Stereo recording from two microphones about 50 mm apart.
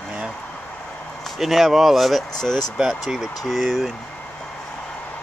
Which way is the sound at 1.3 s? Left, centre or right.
Centre.